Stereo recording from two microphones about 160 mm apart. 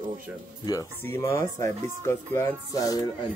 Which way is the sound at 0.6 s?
20° left (ahead or behind).